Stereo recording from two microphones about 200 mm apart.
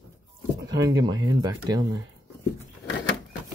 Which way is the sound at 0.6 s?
20° right (ahead or behind).